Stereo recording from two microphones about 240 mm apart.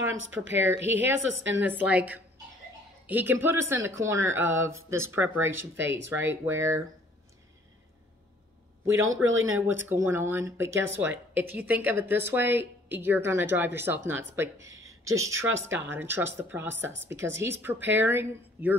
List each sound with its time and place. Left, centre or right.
0.1 s a woman's voice: right
1.6 s speech: centre
5.5 s a woman's voice: right
6.0 s speech: centre
8.8 s a man's voice: right
9.7 s speech: centre